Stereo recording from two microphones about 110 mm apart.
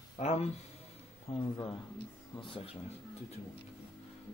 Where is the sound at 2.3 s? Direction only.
50° left (ahead or behind).